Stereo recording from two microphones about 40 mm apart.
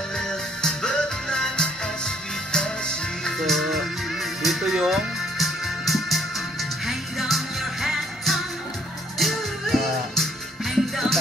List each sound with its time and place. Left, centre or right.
0.6 s music: centre
3.3 s music: centre